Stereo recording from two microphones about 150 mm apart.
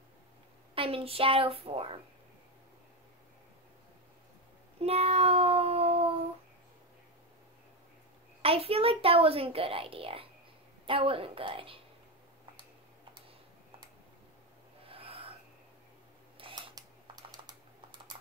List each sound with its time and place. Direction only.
0.7 s a woman's voice: 40° right (ahead or behind)
4.7 s child singing: 40° right (ahead or behind)
8.4 s a woman's voice: 40° right (ahead or behind)
14.9 s wheeze: 40° right (ahead or behind)
16.3 s camera: 35° right (ahead or behind)
16.7 s typing: 30° right (ahead or behind)